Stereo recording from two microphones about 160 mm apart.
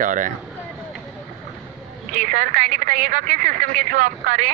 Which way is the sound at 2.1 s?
55° right (ahead or behind).